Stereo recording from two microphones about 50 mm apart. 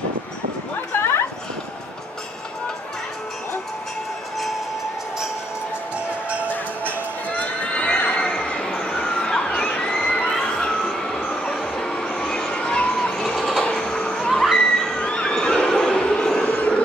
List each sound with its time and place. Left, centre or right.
6.5 s music: left
10.9 s vehicle: centre
13.8 s cat: centre
14.3 s cat: centre
14.6 s a sound: centre
15.0 s a sound: centre
16.4 s vehicle: left